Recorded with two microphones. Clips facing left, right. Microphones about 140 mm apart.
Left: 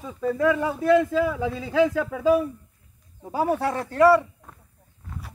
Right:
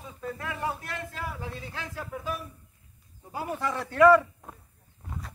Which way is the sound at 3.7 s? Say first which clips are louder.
Left 4 dB; 45° left (ahead or behind).